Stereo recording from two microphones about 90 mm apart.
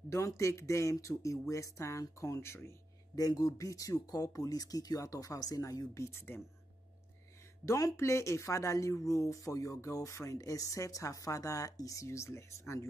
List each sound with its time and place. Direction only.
0.1 s speech: 35° left (ahead or behind)
3.2 s speech: 45° left (ahead or behind)
6.3 s speech: 25° left (ahead or behind)
7.6 s speech: 35° left (ahead or behind)